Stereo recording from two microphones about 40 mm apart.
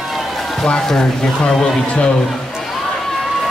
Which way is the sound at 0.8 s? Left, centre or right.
Centre.